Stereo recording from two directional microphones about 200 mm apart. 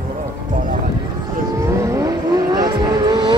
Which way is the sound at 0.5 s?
40° right (ahead or behind).